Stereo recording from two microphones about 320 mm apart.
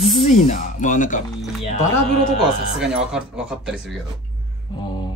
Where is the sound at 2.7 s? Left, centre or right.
Centre.